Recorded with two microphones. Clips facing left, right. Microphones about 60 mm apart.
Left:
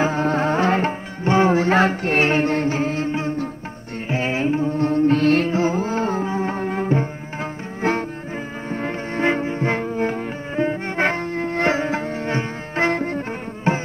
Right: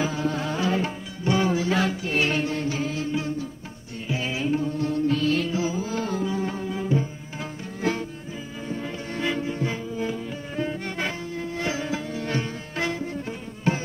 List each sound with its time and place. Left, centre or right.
0.0 s music: left
9.7 s music: left
10.5 s music: left
12.9 s music: left
13.7 s music: left